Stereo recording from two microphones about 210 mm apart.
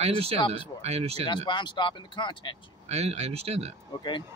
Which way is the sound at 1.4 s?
20° left (ahead or behind).